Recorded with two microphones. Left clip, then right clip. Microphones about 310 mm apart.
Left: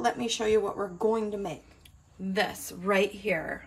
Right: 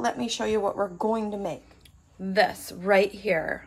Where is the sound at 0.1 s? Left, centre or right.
Centre.